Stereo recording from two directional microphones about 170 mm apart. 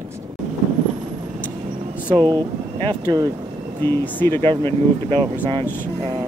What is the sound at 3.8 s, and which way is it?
Speech, 10° left (ahead or behind).